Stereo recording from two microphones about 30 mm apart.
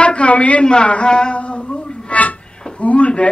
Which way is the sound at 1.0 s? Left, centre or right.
Left.